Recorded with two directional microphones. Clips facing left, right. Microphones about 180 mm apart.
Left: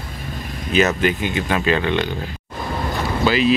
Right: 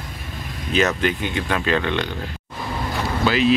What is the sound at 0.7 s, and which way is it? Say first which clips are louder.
Speech: left 2 dB; 5° left (ahead or behind).